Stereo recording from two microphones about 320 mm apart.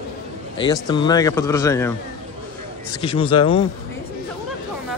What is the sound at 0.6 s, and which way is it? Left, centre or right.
Speech, centre.